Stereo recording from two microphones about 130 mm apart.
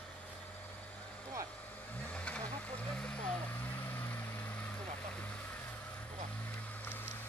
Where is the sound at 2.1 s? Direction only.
10° left (ahead or behind).